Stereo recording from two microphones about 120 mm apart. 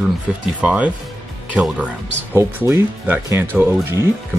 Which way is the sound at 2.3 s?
20° right (ahead or behind).